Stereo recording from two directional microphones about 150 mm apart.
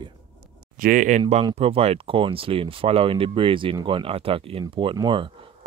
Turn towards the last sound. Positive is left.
turn(degrees=-35)  # may be behind; listen again after turning